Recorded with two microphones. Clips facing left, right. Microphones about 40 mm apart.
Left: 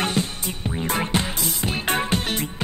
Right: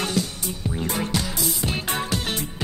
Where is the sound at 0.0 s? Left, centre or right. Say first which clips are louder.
Left 1 dB; left.